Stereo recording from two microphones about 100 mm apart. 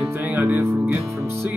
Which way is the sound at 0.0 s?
25° right (ahead or behind).